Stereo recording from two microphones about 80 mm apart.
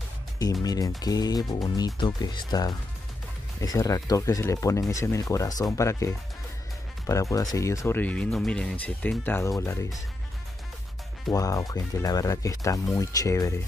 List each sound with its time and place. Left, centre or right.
0.4 s speech: left
2.0 s speech: left
3.6 s speech: left
7.9 s speech: centre
9.4 s speech: left
11.3 s speech: left